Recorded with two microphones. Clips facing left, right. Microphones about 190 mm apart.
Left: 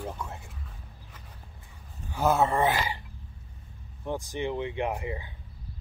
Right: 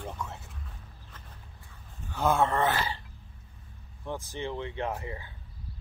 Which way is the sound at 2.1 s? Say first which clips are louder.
Left 2 dB; 10° left (ahead or behind).